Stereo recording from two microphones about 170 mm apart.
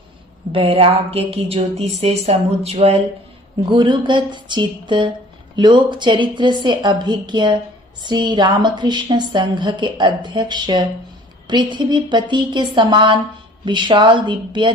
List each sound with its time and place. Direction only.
0.5 s a woman's voice: 35° right (ahead or behind)